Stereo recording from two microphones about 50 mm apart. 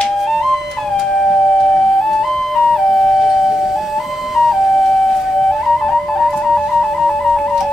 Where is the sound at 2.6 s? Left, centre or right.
Centre.